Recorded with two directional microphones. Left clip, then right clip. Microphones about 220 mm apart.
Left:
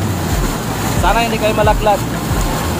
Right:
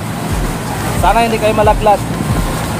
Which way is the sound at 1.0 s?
25° right (ahead or behind).